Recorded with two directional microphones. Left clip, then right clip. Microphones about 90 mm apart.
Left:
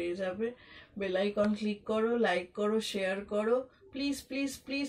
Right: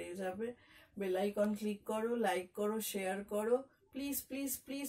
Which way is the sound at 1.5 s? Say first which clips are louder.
Left 6 dB; 40° right (ahead or behind).